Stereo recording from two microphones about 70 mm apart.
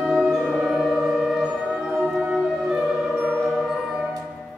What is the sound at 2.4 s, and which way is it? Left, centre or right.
Music, centre.